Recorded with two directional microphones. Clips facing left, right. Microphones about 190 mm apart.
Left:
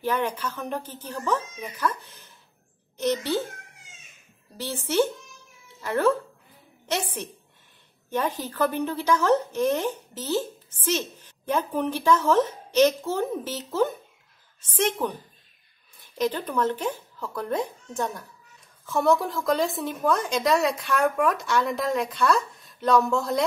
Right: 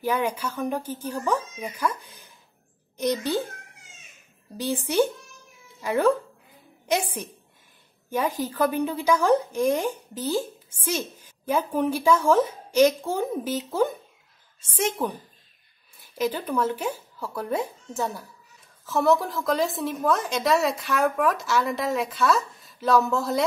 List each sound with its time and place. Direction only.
0.0 s a woman's voice: 10° right (ahead or behind)
4.6 s a woman's voice: 15° right (ahead or behind)